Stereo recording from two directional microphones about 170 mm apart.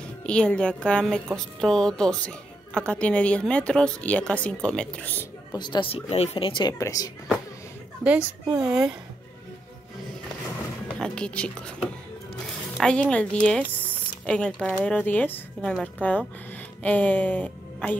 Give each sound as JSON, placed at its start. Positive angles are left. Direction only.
{"t": 0.3, "sound": "a woman's voice", "side_deg": 5}
{"t": 5.5, "sound": "speech", "side_deg": 25}
{"t": 6.8, "sound": "speech", "side_deg": 20}
{"t": 8.0, "sound": "a child's voice", "side_deg": -10}
{"t": 11.0, "sound": "a woman's voice", "side_deg": 5}